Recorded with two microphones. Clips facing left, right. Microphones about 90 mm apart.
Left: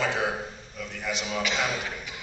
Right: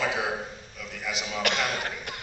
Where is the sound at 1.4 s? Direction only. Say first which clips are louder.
Right 2 dB; 60° right (ahead or behind).